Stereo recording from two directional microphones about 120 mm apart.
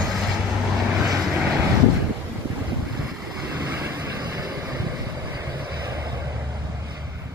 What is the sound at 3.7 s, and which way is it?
Vehicle, 25° right (ahead or behind).